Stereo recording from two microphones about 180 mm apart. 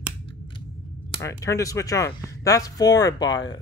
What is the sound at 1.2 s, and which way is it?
Speech, 15° left (ahead or behind).